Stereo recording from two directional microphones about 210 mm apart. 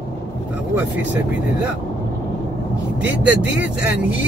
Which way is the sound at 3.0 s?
5° right (ahead or behind).